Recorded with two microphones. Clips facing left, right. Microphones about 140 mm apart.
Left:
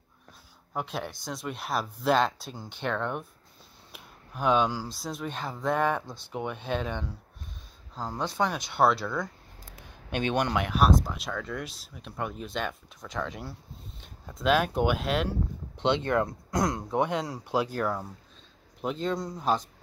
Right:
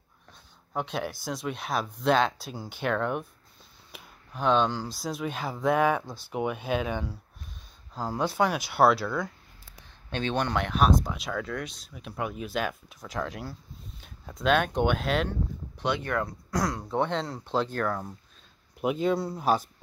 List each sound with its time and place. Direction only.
0.7 s speech: centre (ahead or behind)
3.9 s speech: 5° left (ahead or behind)
10.0 s speech: 15° left (ahead or behind)
15.7 s speech: 25° left (ahead or behind)
18.8 s speech: 10° right (ahead or behind)